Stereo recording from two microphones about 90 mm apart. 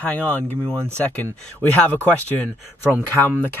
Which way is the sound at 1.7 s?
15° left (ahead or behind).